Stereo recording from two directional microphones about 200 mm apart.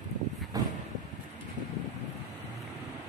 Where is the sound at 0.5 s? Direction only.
20° right (ahead or behind).